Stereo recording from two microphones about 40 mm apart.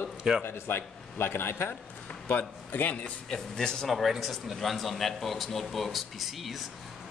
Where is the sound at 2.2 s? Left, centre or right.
Left.